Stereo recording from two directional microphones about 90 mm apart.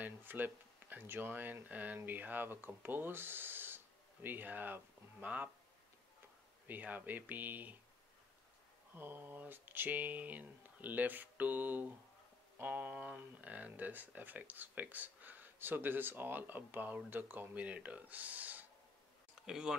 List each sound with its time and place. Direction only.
0.0 s speech: 20° right (ahead or behind)
6.7 s speech: 20° right (ahead or behind)
8.9 s speech: 20° right (ahead or behind)
19.4 s speech: 5° right (ahead or behind)